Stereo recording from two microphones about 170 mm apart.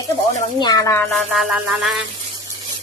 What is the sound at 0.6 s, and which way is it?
Speech, 25° left (ahead or behind).